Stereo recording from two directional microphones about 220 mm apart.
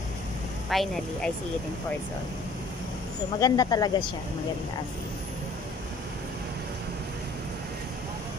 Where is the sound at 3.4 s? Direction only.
15° left (ahead or behind).